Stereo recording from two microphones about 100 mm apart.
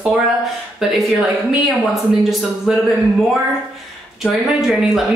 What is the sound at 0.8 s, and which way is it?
A woman's voice, 5° right (ahead or behind).